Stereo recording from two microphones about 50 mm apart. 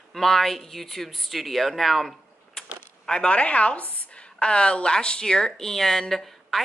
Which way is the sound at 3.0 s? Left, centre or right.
Centre.